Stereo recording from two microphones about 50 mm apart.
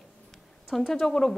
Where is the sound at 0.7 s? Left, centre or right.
Centre.